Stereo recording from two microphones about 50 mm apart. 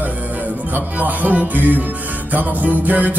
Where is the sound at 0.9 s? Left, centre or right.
Right.